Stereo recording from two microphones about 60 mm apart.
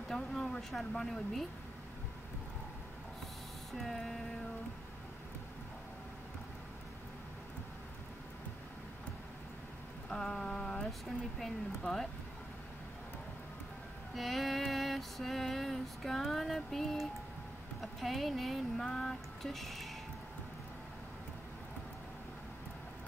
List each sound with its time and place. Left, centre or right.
0.1 s speech: centre
3.7 s female singing: centre
10.0 s a sound: centre
10.9 s female singing: centre
14.1 s female singing: centre